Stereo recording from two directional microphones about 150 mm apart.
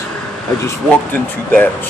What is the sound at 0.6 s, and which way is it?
Speech, 15° left (ahead or behind).